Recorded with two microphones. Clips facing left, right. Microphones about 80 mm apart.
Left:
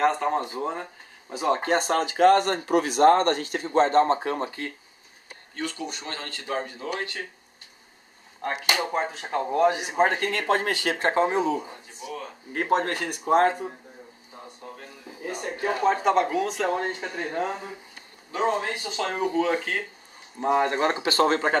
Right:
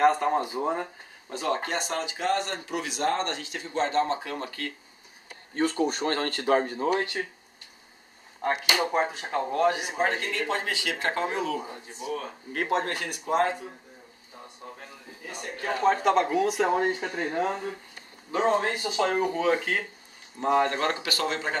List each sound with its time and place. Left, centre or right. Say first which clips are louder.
0.0 s speech: right 1 dB; centre
1.3 s speech: left 2 dB; centre
1.7 s speech: left 7 dB; left
4.5 s speech: left 1 dB; left
5.5 s speech: right 7 dB; right
8.4 s speech: right 1 dB; centre
9.5 s speech: left 3 dB; centre
9.9 s speech: left 4 dB; left
12.0 s speech: right 3 dB; right
12.6 s speech: left 4 dB; left
15.2 s speech: left 6 dB; left
15.5 s speech: left 2 dB; centre
15.8 s speech: even; centre
20.3 s speech: left 1 dB; centre; by 21.4 s left